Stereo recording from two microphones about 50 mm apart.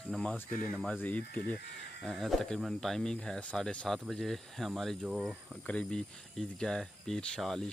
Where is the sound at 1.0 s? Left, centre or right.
Left.